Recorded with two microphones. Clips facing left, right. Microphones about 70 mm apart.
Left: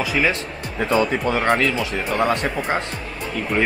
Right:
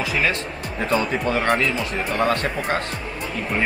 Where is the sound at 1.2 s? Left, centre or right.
Centre.